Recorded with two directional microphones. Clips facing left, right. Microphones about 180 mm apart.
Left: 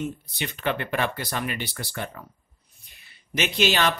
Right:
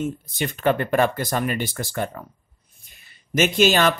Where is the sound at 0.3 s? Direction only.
45° right (ahead or behind).